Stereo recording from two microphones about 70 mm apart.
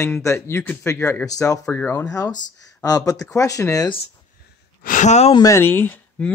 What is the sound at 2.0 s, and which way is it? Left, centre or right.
Speech, left.